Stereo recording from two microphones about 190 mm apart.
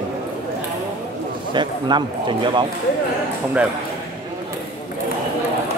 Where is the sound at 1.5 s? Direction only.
25° right (ahead or behind).